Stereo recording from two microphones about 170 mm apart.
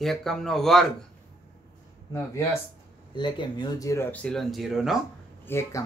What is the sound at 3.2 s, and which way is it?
Speech, 25° left (ahead or behind).